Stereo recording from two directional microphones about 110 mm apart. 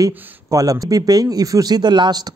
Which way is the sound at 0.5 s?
30° right (ahead or behind).